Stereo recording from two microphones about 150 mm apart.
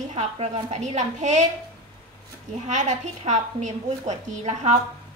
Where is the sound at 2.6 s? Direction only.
50° right (ahead or behind).